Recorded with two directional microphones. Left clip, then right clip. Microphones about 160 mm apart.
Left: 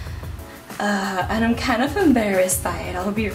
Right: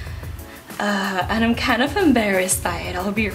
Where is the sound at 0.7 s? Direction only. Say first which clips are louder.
Right 1 dB; 30° right (ahead or behind).